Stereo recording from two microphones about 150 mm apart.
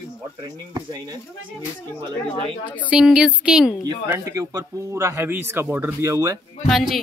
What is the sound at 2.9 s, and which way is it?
Speech, 5° right (ahead or behind).